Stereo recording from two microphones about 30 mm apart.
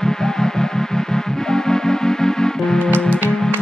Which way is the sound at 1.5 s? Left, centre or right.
Centre.